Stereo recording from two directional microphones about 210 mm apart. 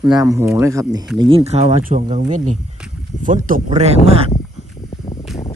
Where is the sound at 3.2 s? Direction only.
40° right (ahead or behind).